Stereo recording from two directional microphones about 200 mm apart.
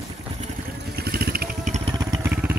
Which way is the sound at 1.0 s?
50° right (ahead or behind).